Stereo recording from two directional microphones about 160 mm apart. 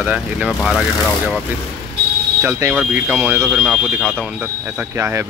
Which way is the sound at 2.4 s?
10° right (ahead or behind).